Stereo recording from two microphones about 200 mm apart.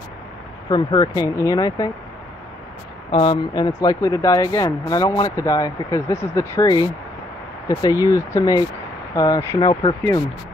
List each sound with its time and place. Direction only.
0.7 s speech: 20° left (ahead or behind)
3.1 s speech: 25° left (ahead or behind)